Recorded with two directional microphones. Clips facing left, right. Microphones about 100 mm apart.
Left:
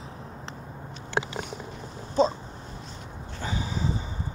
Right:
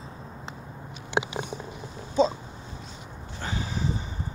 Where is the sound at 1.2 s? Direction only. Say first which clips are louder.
Right 1 dB; 15° right (ahead or behind).